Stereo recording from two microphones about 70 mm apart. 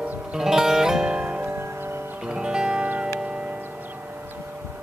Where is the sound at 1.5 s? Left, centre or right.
Right.